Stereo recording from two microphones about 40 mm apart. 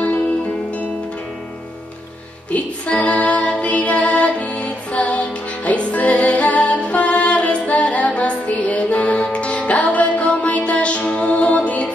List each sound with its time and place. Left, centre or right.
2.5 s female singing: left
3.6 s music: left